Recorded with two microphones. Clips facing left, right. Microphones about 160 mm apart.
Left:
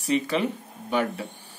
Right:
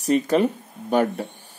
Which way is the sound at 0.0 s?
45° right (ahead or behind).